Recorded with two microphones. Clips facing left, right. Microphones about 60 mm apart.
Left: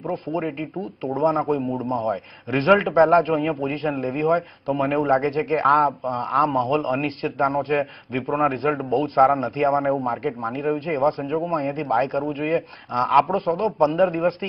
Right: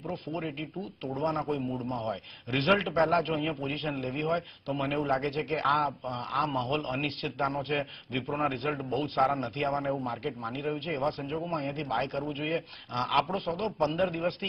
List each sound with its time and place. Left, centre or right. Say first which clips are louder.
0.1 s a man's voice: left 9 dB; left
2.0 s a man's voice: left 9 dB; left
3.3 s a man's voice: left 8 dB; left
5.1 s a man's voice: left 9 dB; left